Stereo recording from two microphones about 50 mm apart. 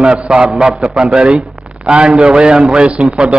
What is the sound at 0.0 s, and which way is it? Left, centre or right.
A man's voice, centre.